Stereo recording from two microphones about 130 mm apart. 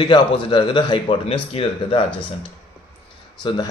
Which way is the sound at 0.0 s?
40° left (ahead or behind).